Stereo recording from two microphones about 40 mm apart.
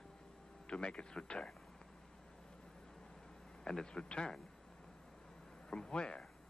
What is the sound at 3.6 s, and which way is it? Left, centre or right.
Speech, centre.